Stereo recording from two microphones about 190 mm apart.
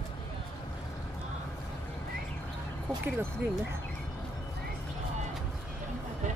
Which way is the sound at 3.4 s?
10° right (ahead or behind).